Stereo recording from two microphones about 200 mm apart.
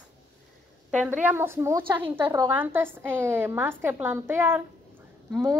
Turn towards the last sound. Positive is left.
turn(degrees=-15)  # may be behind; listen again after turning